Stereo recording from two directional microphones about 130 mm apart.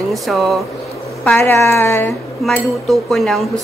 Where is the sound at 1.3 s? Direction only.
20° left (ahead or behind).